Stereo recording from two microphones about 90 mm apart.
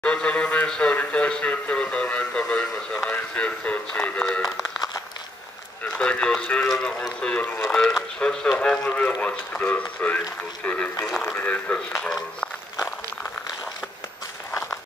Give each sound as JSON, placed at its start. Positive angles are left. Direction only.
{"t": 0.0, "sound": "a sound", "side_deg": 10}
{"t": 3.1, "sound": "music", "side_deg": 15}
{"t": 5.9, "sound": "radio", "side_deg": 10}
{"t": 6.7, "sound": "speech", "side_deg": 10}
{"t": 8.2, "sound": "speech", "side_deg": 10}